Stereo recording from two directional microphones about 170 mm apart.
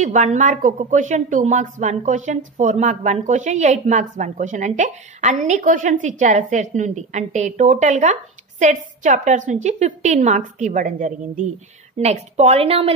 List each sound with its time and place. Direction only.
0.0 s a woman's voice: 45° right (ahead or behind)